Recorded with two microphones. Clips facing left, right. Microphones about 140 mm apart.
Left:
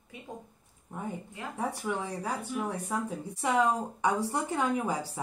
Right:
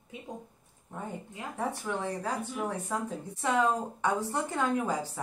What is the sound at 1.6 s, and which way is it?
Speech, 10° left (ahead or behind).